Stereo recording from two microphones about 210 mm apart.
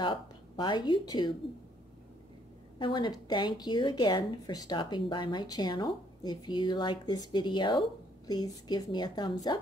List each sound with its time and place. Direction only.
0.0 s speech: 20° left (ahead or behind)
2.8 s a woman's voice: 20° left (ahead or behind)